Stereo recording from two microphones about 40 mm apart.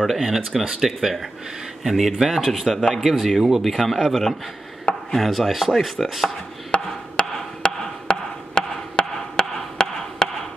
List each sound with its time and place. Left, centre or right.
0.2 s chopping: centre
1.8 s speech: centre
3.6 s chopping: centre
6.7 s wood block: left